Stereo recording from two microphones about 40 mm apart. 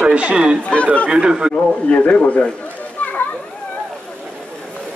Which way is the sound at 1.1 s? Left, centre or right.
Right.